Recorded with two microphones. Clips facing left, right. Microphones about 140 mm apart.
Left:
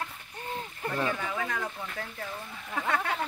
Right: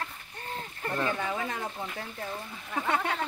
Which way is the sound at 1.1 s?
30° right (ahead or behind).